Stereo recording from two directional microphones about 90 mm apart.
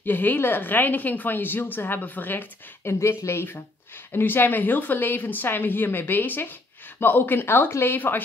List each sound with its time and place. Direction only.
0.0 s a woman's voice: 20° left (ahead or behind)